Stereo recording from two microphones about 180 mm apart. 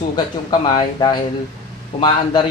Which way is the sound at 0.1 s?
25° left (ahead or behind).